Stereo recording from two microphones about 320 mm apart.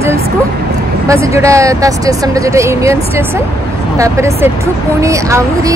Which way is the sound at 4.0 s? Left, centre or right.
Centre.